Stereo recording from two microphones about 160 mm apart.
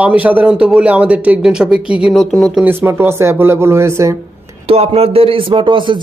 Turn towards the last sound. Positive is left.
turn(degrees=-30)  # may be behind; listen again after turning